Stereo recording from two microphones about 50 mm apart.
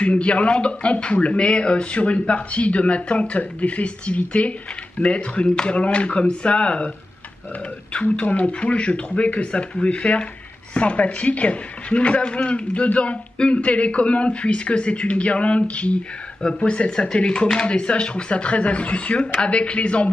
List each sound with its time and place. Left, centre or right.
0.0 s speech: left
7.9 s speech: left